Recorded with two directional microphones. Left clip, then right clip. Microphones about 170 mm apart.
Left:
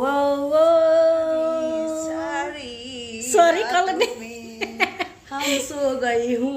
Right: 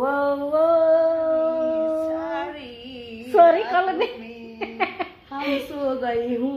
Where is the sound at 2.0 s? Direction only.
15° left (ahead or behind).